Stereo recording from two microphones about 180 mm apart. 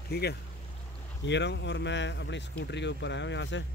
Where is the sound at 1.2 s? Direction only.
75° left (ahead or behind).